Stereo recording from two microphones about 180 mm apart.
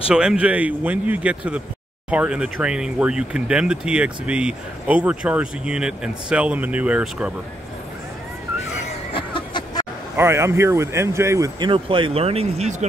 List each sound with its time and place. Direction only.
0.1 s speech: 5° right (ahead or behind)
9.1 s a sound: 25° left (ahead or behind)
10.1 s speech: 15° right (ahead or behind)
11.7 s speech: 30° right (ahead or behind)